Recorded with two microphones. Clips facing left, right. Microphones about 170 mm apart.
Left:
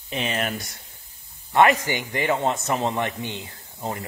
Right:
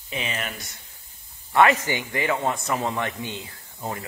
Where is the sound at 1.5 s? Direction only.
15° left (ahead or behind).